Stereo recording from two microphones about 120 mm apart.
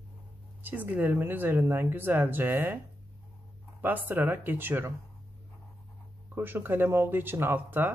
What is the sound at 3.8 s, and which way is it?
Speech, 15° right (ahead or behind).